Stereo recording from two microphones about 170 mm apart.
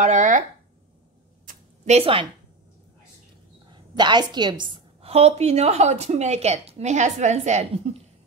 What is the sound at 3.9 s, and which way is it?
A woman's voice, 25° right (ahead or behind).